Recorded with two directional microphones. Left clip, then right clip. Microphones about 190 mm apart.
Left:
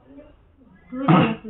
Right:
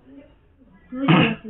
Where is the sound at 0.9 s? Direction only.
Centre (ahead or behind).